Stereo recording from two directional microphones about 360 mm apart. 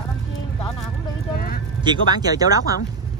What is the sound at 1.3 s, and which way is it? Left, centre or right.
Speech, left.